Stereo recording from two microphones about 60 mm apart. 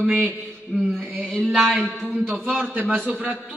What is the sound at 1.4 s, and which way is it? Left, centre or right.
Speech, centre.